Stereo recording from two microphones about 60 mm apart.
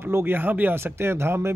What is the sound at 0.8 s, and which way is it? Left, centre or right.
Speech, right.